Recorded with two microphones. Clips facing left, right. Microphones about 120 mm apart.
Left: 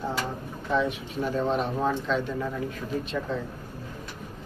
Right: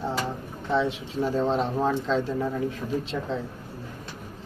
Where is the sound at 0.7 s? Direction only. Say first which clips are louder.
Right 1 dB; 30° right (ahead or behind).